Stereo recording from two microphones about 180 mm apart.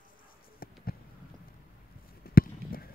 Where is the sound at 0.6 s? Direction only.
55° left (ahead or behind).